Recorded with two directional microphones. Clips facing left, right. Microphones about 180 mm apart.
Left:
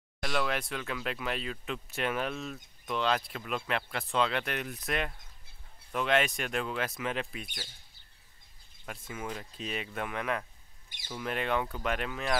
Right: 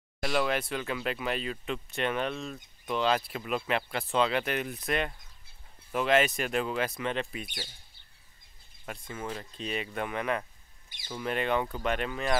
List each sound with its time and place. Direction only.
0.2 s speech: 5° right (ahead or behind)
8.8 s speech: 5° left (ahead or behind)